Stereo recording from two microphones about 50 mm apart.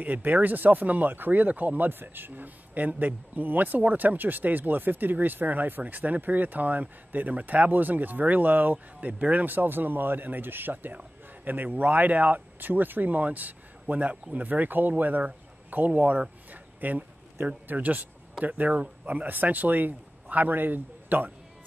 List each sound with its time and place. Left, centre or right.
0.0 s speech: right